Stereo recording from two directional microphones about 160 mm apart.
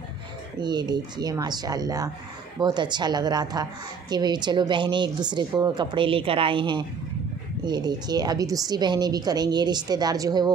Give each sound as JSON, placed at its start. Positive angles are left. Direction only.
{"t": 0.6, "sound": "a woman's voice", "side_deg": -25}